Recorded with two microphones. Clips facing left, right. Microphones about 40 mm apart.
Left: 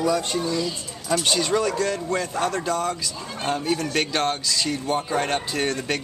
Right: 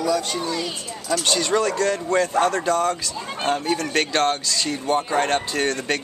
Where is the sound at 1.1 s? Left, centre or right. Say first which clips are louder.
Right 1 dB; centre.